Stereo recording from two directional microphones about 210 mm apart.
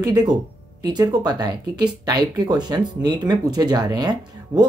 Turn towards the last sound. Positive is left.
turn(degrees=-20)  # may be behind; listen again after turning